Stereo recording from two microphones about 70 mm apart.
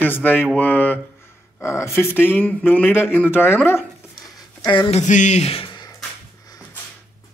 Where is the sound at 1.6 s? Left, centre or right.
Left.